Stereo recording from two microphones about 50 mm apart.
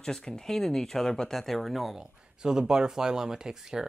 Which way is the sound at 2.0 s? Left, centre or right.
Centre.